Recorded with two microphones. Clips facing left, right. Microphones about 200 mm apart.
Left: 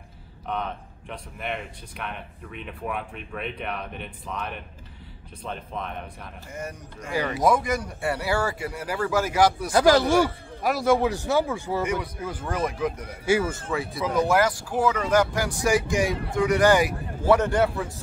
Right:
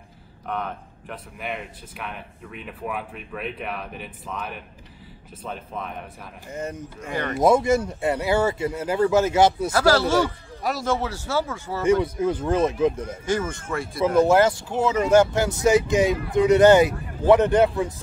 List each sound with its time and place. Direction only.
0.5 s speech: 5° right (ahead or behind)
6.5 s speech: 20° right (ahead or behind)
7.2 s speech: centre (ahead or behind)
7.4 s speech: 25° right (ahead or behind)
9.7 s speech: 20° left (ahead or behind)
11.8 s speech: 25° right (ahead or behind)
13.2 s speech: 10° left (ahead or behind)
14.1 s speech: 25° right (ahead or behind)